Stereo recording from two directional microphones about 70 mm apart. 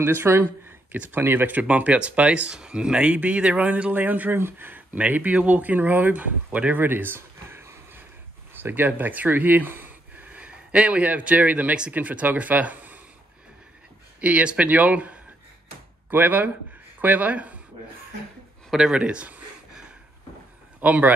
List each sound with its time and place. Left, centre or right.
0.0 s speech: right
14.2 s speech: centre
18.7 s speech: centre
20.8 s speech: right